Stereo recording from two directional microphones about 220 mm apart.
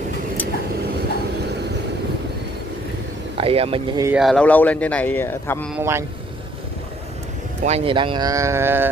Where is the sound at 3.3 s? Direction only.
25° right (ahead or behind).